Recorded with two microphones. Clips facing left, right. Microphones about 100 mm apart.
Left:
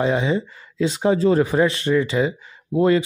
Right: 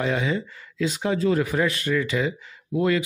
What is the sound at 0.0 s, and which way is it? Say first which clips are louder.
Speech: left 5 dB; 25° left (ahead or behind).